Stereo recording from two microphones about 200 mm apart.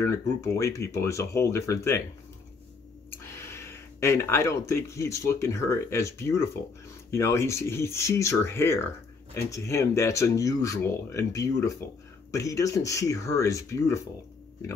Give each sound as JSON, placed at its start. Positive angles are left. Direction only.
{"t": 0.0, "sound": "speech", "side_deg": 15}
{"t": 3.3, "sound": "speech", "side_deg": 15}